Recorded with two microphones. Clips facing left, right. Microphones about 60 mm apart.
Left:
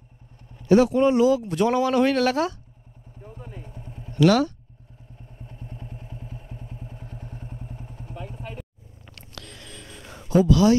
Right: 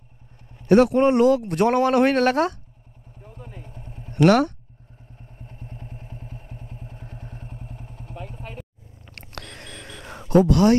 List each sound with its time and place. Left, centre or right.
0.6 s a man's voice: right
3.2 s vehicle: left
3.4 s vehicle: right
5.4 s vehicle: right
9.1 s a sound: right